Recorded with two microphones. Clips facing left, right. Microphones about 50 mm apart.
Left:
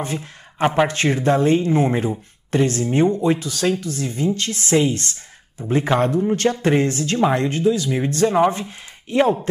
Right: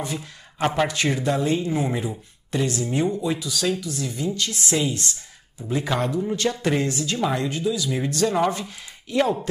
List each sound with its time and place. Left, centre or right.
0.0 s speech: left
0.6 s speech: centre
0.8 s speech: left